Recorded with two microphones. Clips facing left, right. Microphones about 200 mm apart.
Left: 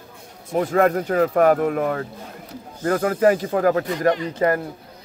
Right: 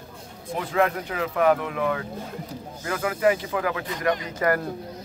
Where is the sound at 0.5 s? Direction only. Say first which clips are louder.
Left 6 dB; 45° left (ahead or behind); by 4.6 s 30° left (ahead or behind).